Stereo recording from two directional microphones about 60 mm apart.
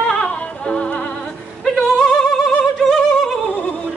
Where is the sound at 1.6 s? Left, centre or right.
Centre.